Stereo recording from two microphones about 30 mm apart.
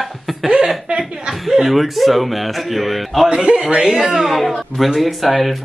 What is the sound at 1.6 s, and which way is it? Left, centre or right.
Speech, centre.